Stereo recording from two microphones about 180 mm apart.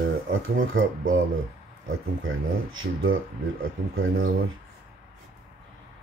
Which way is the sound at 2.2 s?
90° right.